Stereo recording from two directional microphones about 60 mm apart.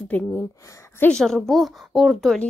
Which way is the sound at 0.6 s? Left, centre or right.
Left.